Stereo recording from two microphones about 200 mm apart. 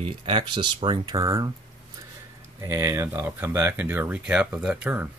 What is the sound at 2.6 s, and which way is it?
Speech, 15° right (ahead or behind).